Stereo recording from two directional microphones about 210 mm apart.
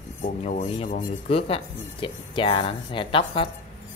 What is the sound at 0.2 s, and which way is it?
Speech, 35° left (ahead or behind).